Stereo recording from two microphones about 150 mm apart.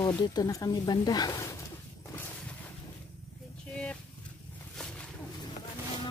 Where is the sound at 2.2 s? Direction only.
10° left (ahead or behind).